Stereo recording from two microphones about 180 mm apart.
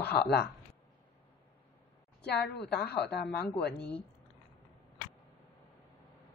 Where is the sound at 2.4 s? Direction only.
65° left (ahead or behind).